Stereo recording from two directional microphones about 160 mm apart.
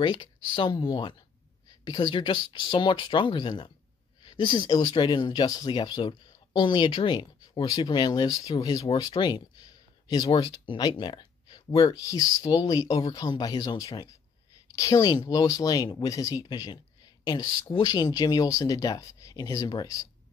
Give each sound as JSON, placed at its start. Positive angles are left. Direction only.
{"t": 0.0, "sound": "speech", "side_deg": 25}